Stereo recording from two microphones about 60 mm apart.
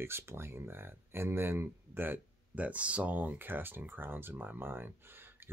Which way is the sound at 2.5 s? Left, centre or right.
Right.